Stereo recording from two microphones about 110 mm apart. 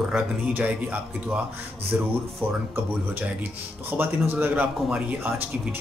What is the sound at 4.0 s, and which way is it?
Speech, 20° right (ahead or behind).